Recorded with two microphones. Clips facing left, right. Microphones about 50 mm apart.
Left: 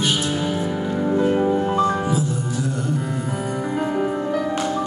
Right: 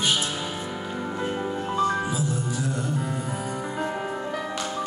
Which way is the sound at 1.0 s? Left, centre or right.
Centre.